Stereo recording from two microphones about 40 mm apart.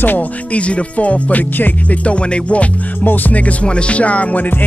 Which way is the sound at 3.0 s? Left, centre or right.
Left.